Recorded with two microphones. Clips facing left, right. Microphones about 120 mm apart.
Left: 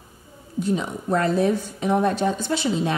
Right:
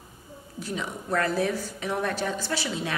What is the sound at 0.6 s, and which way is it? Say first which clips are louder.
A woman's voice: left 9 dB; 20° left (ahead or behind).